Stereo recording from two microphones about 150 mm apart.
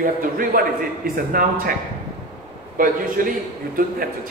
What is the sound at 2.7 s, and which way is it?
Speech, 65° right (ahead or behind).